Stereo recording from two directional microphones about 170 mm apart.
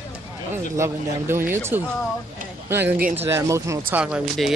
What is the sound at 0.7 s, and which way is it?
Speech, 15° right (ahead or behind).